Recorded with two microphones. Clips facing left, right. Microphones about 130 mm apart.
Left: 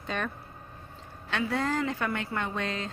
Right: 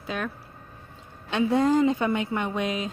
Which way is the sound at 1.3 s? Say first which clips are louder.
Right 8 dB; 20° right (ahead or behind).